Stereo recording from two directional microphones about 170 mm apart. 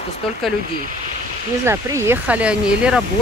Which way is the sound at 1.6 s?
15° right (ahead or behind).